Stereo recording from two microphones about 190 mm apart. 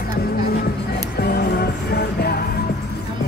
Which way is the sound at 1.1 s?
55° left (ahead or behind).